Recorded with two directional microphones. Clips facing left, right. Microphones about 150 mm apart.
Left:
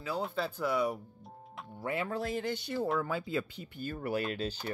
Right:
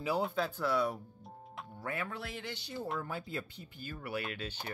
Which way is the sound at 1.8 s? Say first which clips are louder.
Left 5 dB; 25° left (ahead or behind).